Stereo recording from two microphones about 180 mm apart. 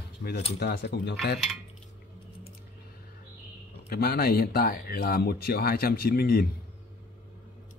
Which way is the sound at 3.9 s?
60° left (ahead or behind).